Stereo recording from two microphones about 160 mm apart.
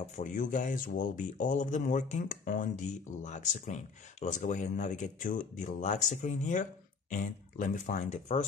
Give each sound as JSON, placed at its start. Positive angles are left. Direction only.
{"t": 0.0, "sound": "speech", "side_deg": 50}